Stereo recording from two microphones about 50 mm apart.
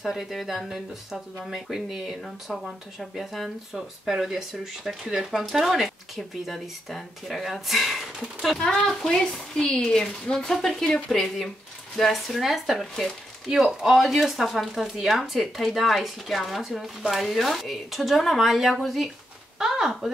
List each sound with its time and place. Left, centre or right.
0.0 s speech: centre
8.5 s speech: centre